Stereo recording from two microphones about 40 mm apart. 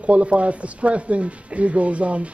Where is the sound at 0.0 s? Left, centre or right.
Right.